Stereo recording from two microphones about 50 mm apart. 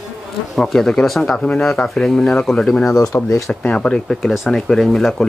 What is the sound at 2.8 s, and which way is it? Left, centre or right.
Speech, left.